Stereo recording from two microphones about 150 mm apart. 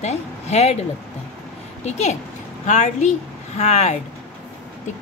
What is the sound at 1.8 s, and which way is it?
A woman's voice, 50° left (ahead or behind).